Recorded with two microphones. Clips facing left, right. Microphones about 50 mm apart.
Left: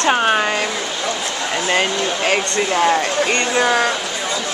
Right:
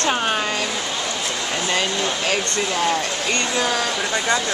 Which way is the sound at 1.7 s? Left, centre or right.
Left.